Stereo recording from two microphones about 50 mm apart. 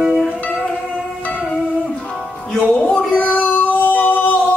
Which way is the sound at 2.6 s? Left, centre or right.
Left.